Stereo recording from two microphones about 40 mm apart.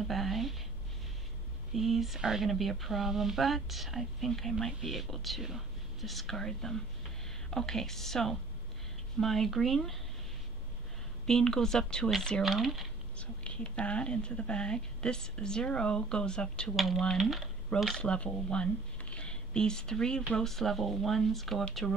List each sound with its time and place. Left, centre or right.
0.0 s a sound: centre
1.7 s speech: centre
2.5 s speech: centre
11.2 s speech: centre
12.4 s speech: centre
13.2 s speech: left
16.7 s speech: centre
17.9 s speech: left; by 21.6 s centre